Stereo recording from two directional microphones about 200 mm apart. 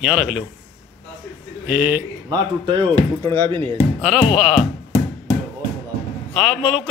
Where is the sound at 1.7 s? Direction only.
10° right (ahead or behind); by 3.7 s 25° right (ahead or behind).